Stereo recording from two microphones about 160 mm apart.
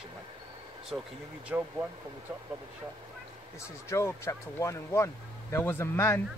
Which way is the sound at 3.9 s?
20° left (ahead or behind).